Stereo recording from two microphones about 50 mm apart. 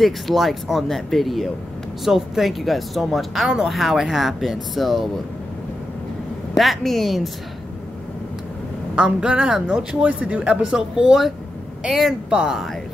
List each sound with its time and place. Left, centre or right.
0.0 s speech: centre
6.5 s speech: centre
8.9 s speech: centre
11.9 s speech: centre